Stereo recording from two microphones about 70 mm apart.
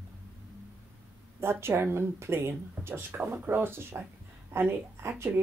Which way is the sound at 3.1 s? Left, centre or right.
Right.